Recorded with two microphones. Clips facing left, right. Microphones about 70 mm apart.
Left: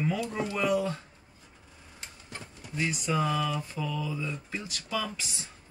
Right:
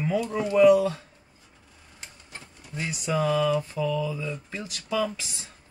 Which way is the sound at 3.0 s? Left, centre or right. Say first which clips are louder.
Right 7 dB; centre.